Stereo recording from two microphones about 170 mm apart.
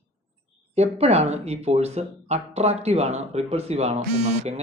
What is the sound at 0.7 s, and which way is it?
Speech, 40° right (ahead or behind).